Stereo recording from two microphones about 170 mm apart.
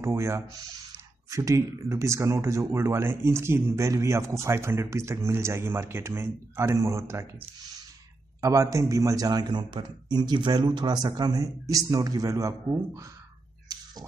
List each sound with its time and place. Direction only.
0.0 s speech: 15° right (ahead or behind)
8.4 s a man's voice: 20° right (ahead or behind)